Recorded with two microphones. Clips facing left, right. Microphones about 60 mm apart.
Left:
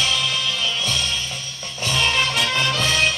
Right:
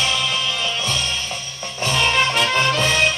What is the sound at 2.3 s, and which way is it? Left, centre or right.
Music, right.